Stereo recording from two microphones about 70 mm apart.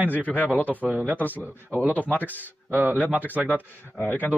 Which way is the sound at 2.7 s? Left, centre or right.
Right.